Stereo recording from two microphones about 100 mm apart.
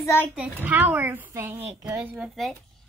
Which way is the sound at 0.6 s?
20° right (ahead or behind).